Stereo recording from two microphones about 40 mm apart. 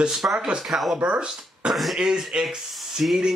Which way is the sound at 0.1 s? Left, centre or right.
Centre.